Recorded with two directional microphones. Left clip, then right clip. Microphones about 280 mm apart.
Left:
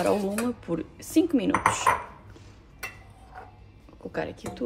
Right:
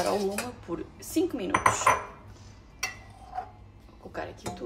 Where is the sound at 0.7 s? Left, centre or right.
Left.